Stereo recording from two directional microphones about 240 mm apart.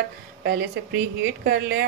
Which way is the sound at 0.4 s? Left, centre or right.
Right.